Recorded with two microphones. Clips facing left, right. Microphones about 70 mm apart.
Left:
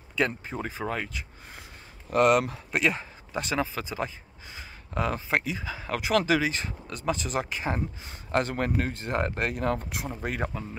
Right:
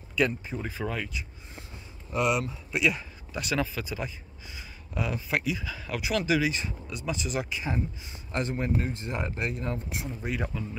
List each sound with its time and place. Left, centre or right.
0.1 s speech: left
2.7 s speech: left
8.3 s speech: left